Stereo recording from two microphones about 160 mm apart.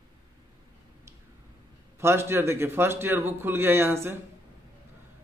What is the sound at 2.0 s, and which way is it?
A man's voice, 15° right (ahead or behind).